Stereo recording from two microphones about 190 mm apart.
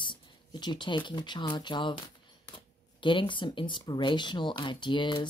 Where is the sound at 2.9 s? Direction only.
25° left (ahead or behind).